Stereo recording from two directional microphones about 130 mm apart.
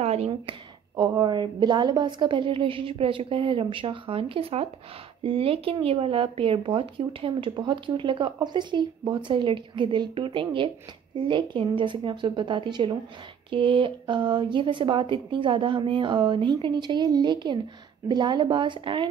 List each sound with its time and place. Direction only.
0.0 s speech: 55° right (ahead or behind)
0.3 s speech: 35° right (ahead or behind)